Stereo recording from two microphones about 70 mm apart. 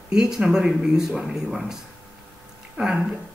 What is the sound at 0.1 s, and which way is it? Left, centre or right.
Speech, centre.